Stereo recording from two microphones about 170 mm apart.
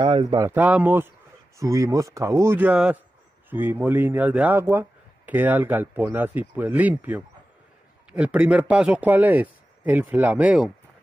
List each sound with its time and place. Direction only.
0.0 s speech: 30° right (ahead or behind)
0.5 s speech: 10° right (ahead or behind)